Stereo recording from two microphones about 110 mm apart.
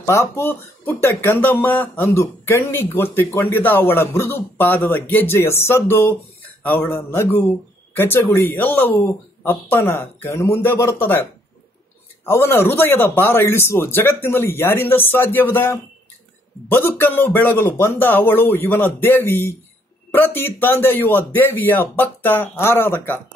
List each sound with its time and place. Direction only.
0.0 s speech: 25° left (ahead or behind)
12.3 s speech: 20° left (ahead or behind)